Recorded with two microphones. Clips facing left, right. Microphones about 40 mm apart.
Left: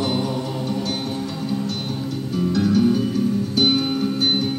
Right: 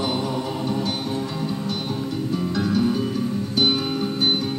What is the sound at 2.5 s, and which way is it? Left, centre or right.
Music, centre.